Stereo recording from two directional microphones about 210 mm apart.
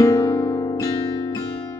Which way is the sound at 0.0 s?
15° left (ahead or behind).